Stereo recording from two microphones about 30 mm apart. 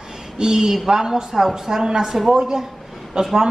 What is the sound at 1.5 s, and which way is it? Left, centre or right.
Speech, right.